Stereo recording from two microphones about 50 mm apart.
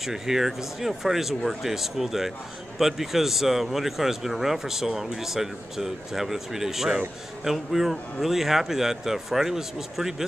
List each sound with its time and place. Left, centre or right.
0.0 s speech: centre